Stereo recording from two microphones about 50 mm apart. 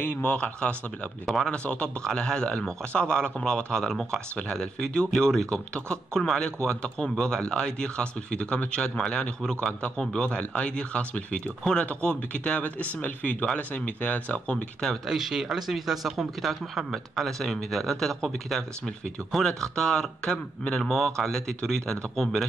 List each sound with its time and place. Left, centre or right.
0.0 s a man's voice: left
1.2 s speech: centre
1.5 s a man's voice: centre
15.0 s speech: centre